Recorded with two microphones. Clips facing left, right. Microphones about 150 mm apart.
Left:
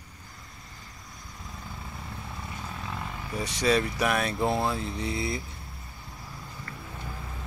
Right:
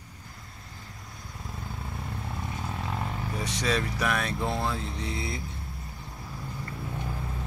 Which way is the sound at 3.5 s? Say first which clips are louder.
Left 5 dB; 5° left (ahead or behind).